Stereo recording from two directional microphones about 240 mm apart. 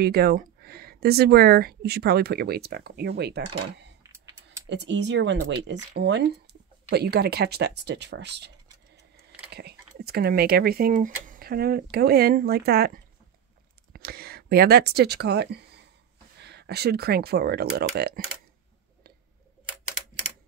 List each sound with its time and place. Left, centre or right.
0.0 s speech: right
4.6 s speech: right
9.5 s speech: right